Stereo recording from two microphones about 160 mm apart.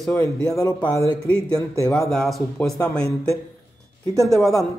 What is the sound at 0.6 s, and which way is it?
A man's voice, 25° left (ahead or behind).